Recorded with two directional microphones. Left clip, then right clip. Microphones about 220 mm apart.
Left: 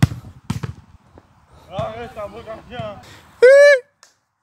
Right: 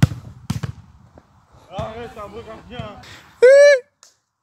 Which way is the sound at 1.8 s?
45° left (ahead or behind).